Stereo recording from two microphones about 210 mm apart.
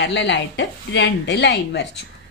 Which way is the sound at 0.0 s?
55° left (ahead or behind).